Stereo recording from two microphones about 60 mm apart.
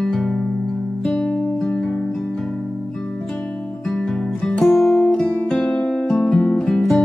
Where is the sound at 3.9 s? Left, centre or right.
Centre.